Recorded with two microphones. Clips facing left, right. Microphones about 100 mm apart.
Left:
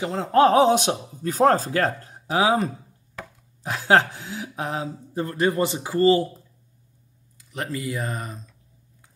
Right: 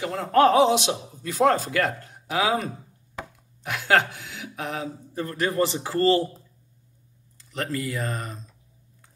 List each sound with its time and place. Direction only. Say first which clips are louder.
0.0 s speech: left 1 dB; 25° left (ahead or behind)
0.6 s speech: left 2 dB; 45° left (ahead or behind); by 8.4 s 10° left (ahead or behind)